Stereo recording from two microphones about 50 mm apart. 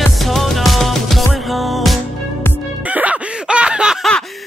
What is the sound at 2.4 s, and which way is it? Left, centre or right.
Music, left.